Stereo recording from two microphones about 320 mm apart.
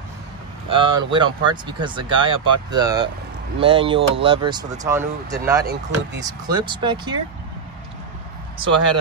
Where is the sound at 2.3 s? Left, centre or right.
Right.